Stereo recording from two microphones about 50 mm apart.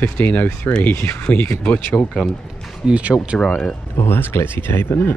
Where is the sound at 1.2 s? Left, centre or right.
Left.